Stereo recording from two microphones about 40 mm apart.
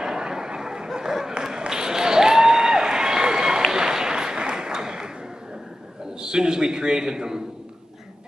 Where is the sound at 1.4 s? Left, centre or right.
Centre.